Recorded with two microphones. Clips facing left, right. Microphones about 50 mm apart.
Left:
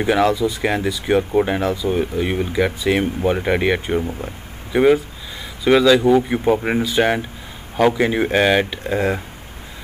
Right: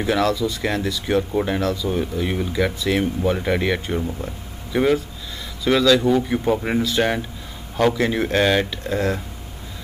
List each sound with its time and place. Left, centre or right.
0.0 s speech: centre